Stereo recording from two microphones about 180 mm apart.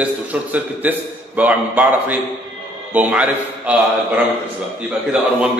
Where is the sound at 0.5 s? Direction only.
10° right (ahead or behind).